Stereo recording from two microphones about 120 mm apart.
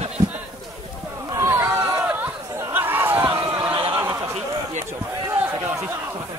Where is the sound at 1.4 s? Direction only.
25° right (ahead or behind).